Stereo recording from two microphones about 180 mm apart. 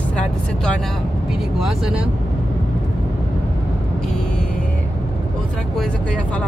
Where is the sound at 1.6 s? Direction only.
Centre (ahead or behind).